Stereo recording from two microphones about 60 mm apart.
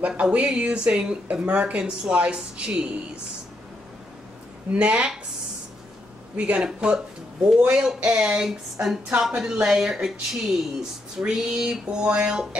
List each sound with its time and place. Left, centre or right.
0.2 s speech: right
4.7 s speech: centre
6.3 s a woman's voice: right